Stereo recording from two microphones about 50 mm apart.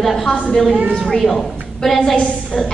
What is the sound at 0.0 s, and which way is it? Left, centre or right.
Speech, centre.